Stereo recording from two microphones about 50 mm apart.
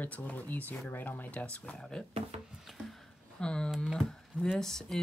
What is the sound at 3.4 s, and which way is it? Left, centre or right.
Speech, centre.